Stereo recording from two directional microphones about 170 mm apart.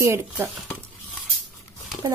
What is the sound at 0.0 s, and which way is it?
Speech, 15° right (ahead or behind).